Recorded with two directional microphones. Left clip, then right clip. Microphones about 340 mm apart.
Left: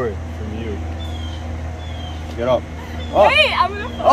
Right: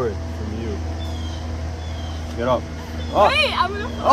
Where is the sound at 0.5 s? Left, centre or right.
Right.